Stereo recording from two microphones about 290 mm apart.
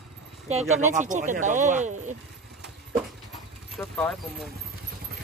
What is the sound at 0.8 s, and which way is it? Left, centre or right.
Speech, right.